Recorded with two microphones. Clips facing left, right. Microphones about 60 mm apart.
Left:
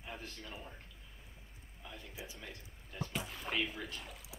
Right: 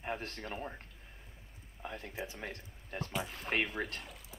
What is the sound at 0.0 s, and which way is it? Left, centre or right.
Speech, right.